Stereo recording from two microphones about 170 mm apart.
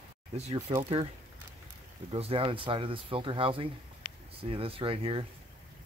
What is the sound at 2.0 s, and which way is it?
Speech, 35° right (ahead or behind).